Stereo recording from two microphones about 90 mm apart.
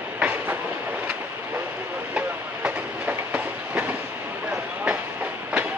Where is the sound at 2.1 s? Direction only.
15° right (ahead or behind).